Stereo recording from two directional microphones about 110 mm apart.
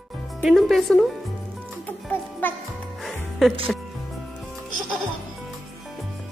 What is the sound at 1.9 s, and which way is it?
Music, 15° left (ahead or behind).